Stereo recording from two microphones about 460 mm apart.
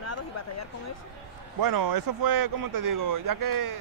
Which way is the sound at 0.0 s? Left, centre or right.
Left.